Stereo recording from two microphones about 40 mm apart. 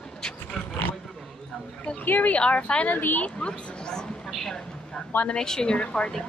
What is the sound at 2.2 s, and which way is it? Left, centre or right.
Speech, left.